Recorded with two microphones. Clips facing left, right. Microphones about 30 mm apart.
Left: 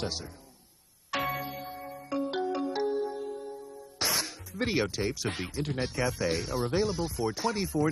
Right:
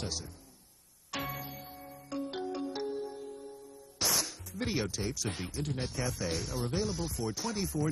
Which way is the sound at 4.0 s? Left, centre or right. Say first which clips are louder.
Left 2 dB; left.